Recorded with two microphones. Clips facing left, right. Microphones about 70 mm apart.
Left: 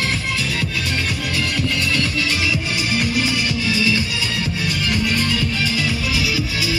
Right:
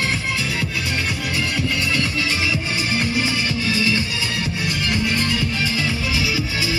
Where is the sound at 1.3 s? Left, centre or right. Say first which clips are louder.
Left 1 dB; right.